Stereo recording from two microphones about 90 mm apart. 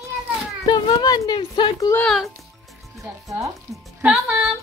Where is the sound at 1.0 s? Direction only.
45° left (ahead or behind).